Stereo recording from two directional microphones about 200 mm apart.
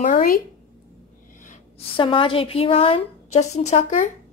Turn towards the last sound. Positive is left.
turn(degrees=35)  # may be behind; listen again after turning